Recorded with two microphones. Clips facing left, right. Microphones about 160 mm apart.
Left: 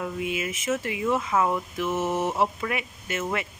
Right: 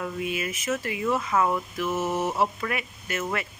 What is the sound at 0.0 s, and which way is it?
Speech, 20° left (ahead or behind).